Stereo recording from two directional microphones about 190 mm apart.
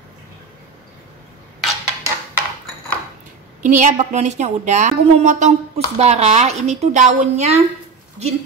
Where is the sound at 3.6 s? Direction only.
40° right (ahead or behind).